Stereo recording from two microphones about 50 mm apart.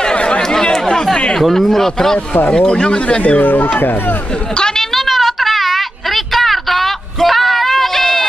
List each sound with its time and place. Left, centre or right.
0.0 s chatter: left
1.4 s speech: centre
2.1 s speech: left
2.5 s speech: centre
3.2 s speech: left
3.4 s speech: left
4.6 s speech: centre
4.9 s a sound: centre